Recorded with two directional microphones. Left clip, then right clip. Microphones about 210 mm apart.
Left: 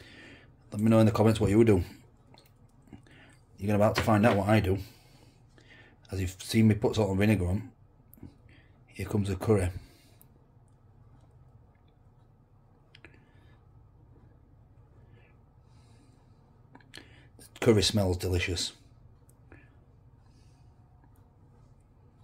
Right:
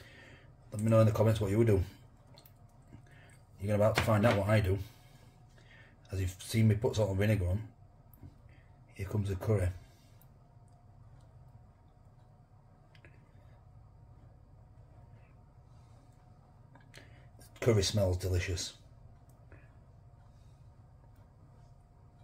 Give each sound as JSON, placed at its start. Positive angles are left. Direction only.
{"t": 0.1, "sound": "speech", "side_deg": 45}
{"t": 3.5, "sound": "speech", "side_deg": 40}
{"t": 5.7, "sound": "speech", "side_deg": 45}
{"t": 8.9, "sound": "speech", "side_deg": 45}
{"t": 17.6, "sound": "speech", "side_deg": 45}